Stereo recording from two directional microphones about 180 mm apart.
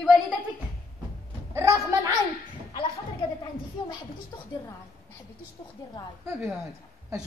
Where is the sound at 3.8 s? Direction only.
25° left (ahead or behind).